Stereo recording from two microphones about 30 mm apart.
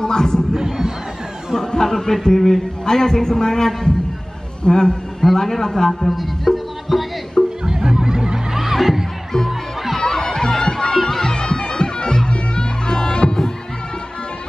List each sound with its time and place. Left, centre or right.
0.0 s speech: left
0.6 s cat: centre
1.7 s a man's voice: centre
5.2 s a man's voice: centre
6.1 s music: centre
7.6 s music: right
8.5 s music: centre
9.9 s music: centre
11.3 s bagpipes: left
12.3 s music: left